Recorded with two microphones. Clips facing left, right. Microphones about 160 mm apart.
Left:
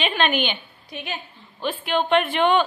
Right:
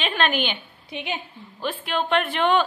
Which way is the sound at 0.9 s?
20° right (ahead or behind).